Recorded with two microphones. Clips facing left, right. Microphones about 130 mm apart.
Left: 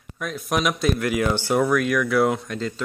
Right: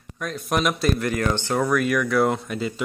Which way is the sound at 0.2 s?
Centre (ahead or behind).